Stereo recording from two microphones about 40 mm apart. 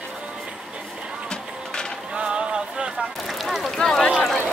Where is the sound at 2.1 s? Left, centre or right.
Right.